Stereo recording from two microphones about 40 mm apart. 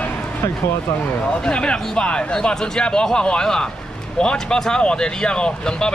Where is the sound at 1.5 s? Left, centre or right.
Left.